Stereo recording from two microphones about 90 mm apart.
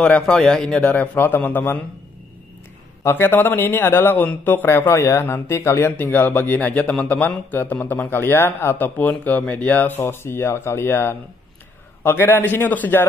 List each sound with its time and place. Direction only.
0.0 s a man's voice: 10° left (ahead or behind)
3.0 s speech: 25° left (ahead or behind)